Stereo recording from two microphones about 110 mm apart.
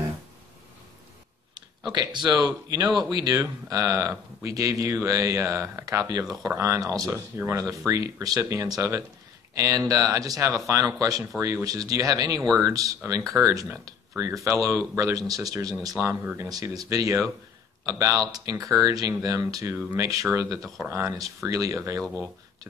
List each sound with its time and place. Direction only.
1.9 s speech: 40° right (ahead or behind)
7.1 s speech: 20° right (ahead or behind)
7.8 s speech: 30° right (ahead or behind)
16.4 s speech: 35° right (ahead or behind)